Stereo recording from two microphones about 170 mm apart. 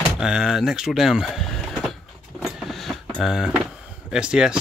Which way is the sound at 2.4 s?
Centre (ahead or behind).